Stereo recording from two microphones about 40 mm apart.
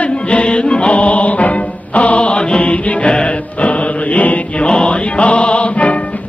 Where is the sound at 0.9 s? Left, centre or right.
Left.